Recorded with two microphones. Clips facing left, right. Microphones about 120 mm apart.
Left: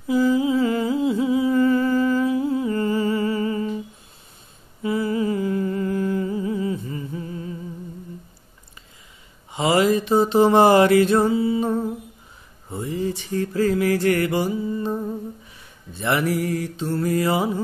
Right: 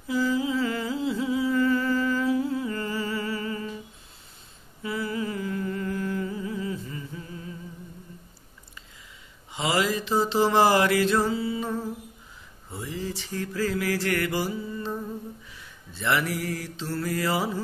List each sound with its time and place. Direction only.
0.1 s humming: 20° left (ahead or behind)
4.8 s humming: 25° left (ahead or behind)
9.8 s mantra: 55° left (ahead or behind)
10.4 s music: 20° left (ahead or behind)
12.8 s a sound: 55° left (ahead or behind)
14.0 s music: 20° left (ahead or behind)